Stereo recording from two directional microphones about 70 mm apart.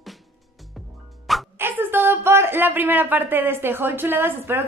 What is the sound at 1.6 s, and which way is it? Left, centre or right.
Speech, right.